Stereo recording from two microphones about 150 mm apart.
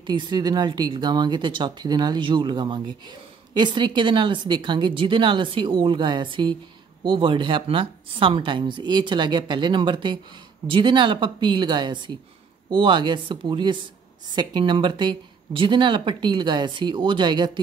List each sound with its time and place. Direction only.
0.0 s speech: 30° right (ahead or behind)